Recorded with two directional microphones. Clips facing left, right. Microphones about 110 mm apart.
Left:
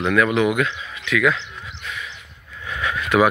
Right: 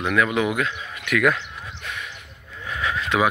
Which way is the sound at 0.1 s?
20° right (ahead or behind).